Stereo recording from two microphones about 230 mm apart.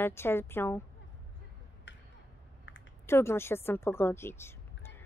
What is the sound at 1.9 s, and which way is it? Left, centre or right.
Tick-tock, left.